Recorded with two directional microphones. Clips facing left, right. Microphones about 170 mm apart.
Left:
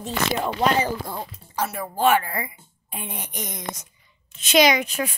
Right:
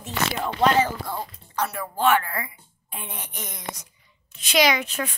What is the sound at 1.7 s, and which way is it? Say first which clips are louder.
Speech: left 2 dB; 15° left (ahead or behind).